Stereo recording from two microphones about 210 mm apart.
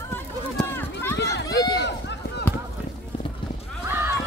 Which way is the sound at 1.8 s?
55° left (ahead or behind).